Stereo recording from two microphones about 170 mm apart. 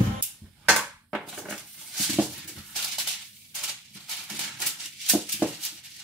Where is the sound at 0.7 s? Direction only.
5° right (ahead or behind).